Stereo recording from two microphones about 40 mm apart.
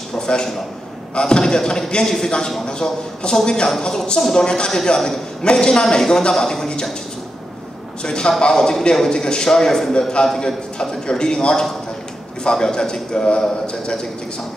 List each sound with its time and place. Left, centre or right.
0.1 s a sound: centre
1.2 s a man's voice: left
8.0 s a man's voice: left